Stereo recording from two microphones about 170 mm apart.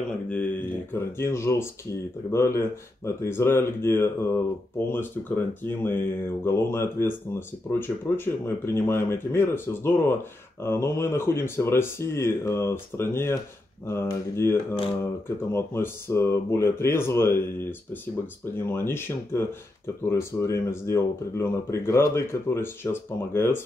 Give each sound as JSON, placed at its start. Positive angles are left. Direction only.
{"t": 0.3, "sound": "speech", "side_deg": 10}